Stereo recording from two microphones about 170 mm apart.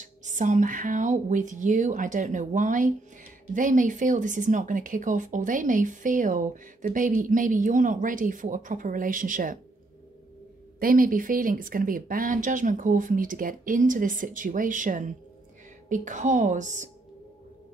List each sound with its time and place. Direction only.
0.0 s speech: 45° right (ahead or behind)
10.8 s speech: 55° right (ahead or behind)